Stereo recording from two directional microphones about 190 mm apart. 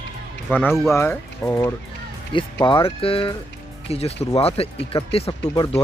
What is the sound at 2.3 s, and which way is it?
Speech, 25° left (ahead or behind).